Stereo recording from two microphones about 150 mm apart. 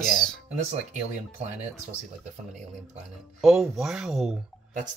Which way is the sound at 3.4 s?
Centre (ahead or behind).